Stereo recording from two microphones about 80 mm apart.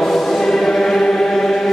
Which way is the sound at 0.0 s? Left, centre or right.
Centre.